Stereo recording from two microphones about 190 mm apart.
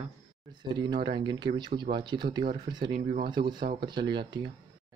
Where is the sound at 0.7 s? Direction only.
25° right (ahead or behind).